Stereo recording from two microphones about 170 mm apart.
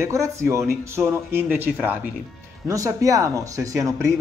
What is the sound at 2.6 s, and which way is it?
Speech, 20° right (ahead or behind).